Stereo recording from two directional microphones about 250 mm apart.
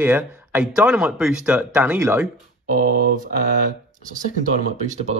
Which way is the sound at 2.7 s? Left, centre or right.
Right.